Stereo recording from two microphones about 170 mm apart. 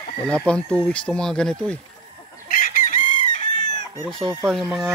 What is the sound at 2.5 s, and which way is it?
Chicken, 55° left (ahead or behind).